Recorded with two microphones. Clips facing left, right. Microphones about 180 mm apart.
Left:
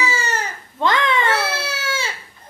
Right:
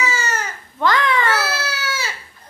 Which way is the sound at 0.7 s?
25° left (ahead or behind).